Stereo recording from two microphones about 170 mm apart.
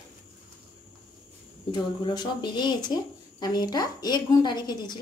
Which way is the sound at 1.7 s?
25° left (ahead or behind).